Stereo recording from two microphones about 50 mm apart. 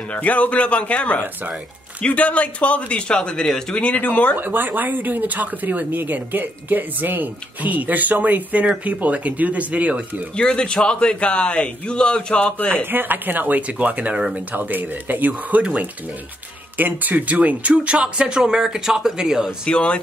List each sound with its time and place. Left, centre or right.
0.1 s a man's voice: left; by 3.8 s centre
3.8 s speech: left
4.4 s speech: right
10.3 s a man's voice: centre
12.9 s speech: right
16.7 s speech: right; by 19.5 s centre
19.6 s a man's voice: left